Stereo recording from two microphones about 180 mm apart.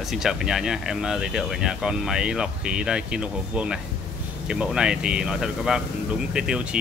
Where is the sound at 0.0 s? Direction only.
Centre (ahead or behind).